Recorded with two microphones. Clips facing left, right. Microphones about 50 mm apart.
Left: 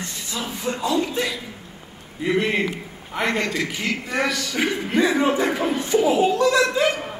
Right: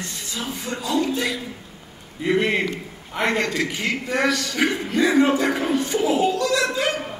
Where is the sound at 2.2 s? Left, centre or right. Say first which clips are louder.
Right 1 dB; centre.